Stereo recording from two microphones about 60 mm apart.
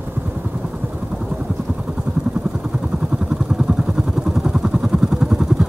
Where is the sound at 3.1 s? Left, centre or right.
Centre.